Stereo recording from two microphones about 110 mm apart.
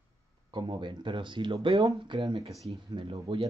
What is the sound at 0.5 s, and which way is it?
A man's voice, 45° right (ahead or behind).